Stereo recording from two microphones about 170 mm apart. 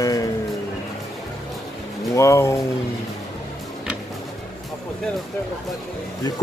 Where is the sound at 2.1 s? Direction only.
15° left (ahead or behind).